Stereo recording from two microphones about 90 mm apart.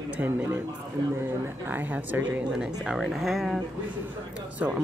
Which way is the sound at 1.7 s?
20° right (ahead or behind).